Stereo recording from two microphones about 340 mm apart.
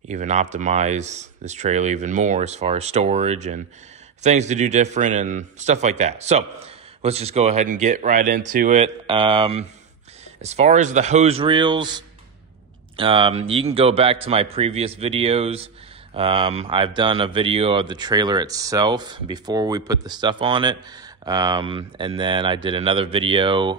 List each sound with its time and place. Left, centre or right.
0.1 s speech: centre